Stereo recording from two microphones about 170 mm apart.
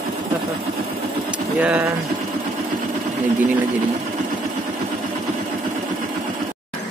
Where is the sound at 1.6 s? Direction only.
10° right (ahead or behind).